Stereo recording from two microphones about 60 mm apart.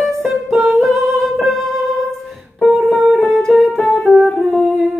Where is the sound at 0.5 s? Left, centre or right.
Centre.